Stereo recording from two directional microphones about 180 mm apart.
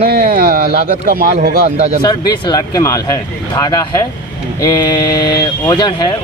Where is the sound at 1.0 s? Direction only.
55° right (ahead or behind).